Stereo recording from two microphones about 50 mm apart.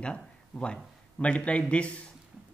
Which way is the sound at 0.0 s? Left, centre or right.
Left.